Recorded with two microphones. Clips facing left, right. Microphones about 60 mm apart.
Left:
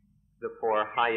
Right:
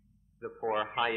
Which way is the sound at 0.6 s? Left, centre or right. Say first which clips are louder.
Left 5 dB; centre.